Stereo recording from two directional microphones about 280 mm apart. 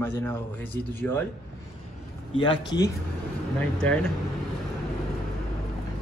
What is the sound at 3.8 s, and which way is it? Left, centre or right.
Speech, centre.